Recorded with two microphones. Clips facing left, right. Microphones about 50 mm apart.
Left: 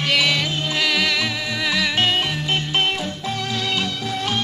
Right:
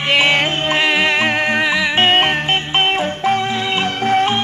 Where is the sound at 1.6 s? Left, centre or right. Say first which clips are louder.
Right 5 dB; right.